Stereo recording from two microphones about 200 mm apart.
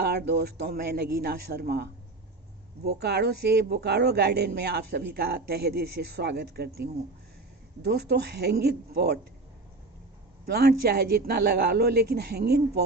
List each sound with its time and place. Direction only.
0.0 s speech: 55° right (ahead or behind)
10.4 s speech: 50° right (ahead or behind)